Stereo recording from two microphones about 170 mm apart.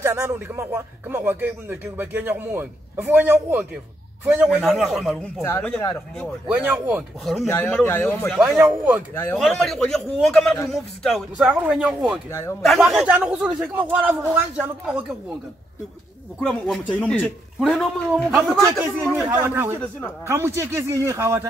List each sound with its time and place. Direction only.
0.0 s a man's voice: 15° right (ahead or behind)
4.6 s a man's voice: 5° left (ahead or behind)
6.5 s speech: 10° right (ahead or behind)
7.4 s a man's voice: 15° left (ahead or behind)
8.4 s a man's voice: 10° right (ahead or behind)
12.3 s a man's voice: 15° left (ahead or behind)
12.6 s speech: centre (ahead or behind)
16.3 s a man's voice: centre (ahead or behind)
18.6 s speech: 15° right (ahead or behind)